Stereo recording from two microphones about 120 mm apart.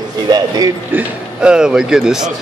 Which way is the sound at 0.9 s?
10° right (ahead or behind).